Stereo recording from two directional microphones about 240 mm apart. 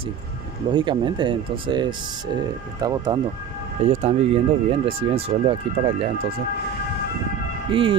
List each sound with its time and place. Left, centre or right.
0.7 s speech: centre
3.9 s speech: right
7.7 s speech: right